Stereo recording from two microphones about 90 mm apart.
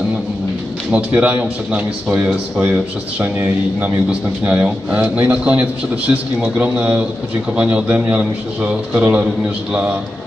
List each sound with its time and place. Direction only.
0.9 s a man's voice: 20° right (ahead or behind)